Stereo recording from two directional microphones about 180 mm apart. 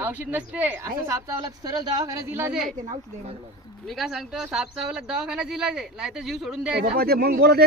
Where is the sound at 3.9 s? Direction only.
Centre (ahead or behind).